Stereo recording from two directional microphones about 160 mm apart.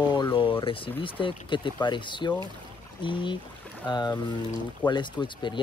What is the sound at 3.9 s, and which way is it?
Speech, 25° left (ahead or behind).